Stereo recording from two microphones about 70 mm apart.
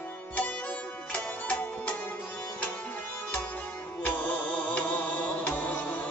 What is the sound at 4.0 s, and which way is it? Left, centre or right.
Music, centre.